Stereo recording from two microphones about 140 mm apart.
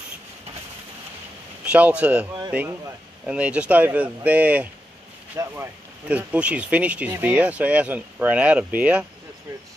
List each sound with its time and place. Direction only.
1.6 s speech: 10° right (ahead or behind)
3.3 s speech: 10° right (ahead or behind)